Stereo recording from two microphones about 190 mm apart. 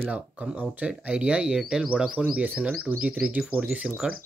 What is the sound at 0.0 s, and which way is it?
Speech, 5° right (ahead or behind).